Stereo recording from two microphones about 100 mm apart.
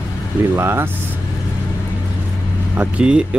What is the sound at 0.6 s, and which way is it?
Speech, 25° right (ahead or behind).